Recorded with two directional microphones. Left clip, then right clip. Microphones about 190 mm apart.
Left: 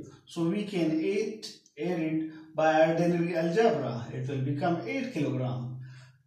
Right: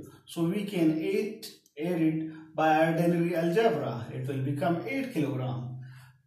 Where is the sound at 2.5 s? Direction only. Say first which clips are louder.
Left 1 dB; 15° right (ahead or behind).